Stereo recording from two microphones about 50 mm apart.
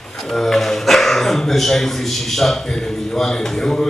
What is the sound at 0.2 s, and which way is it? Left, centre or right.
A man's voice, centre.